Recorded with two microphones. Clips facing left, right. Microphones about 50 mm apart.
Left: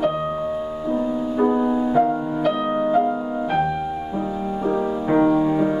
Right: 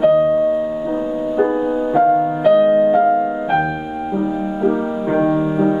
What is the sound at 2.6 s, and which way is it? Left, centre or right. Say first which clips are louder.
Music: right 8 dB; centre.